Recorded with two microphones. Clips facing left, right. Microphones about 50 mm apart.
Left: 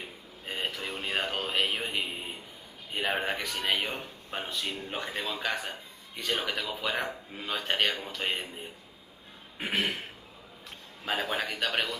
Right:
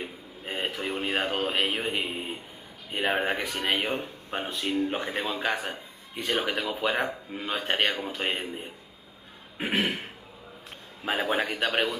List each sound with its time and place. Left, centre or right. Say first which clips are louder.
0.0 s speech: right 5 dB; centre
9.7 s speech: right 3 dB; centre
11.1 s speech: right 4 dB; centre